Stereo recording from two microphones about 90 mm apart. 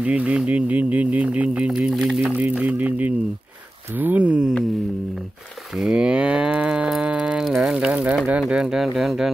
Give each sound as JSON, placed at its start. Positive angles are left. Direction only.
{"t": 0.0, "sound": "speech", "side_deg": -15}
{"t": 1.7, "sound": "speech", "side_deg": -5}
{"t": 2.2, "sound": "speech", "side_deg": -15}
{"t": 5.8, "sound": "moo", "side_deg": -5}
{"t": 7.4, "sound": "a sound", "side_deg": 0}
{"t": 8.3, "sound": "speech", "side_deg": -10}